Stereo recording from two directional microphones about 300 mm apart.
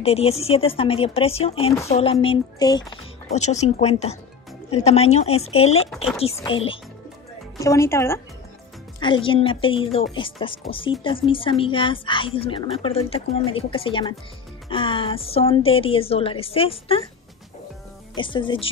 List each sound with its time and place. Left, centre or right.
0.0 s speech: centre
18.1 s speech: centre